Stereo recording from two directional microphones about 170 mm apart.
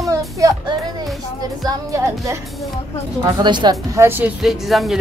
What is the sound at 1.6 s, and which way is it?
Speech, 20° right (ahead or behind).